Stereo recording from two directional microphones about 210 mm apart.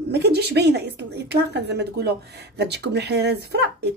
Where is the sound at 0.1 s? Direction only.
50° right (ahead or behind).